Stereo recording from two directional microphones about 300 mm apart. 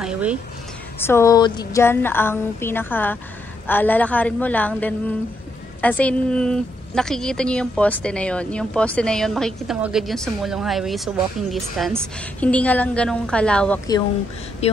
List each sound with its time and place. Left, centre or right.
0.0 s a sound: centre
0.9 s a woman's voice: centre
14.6 s speech: left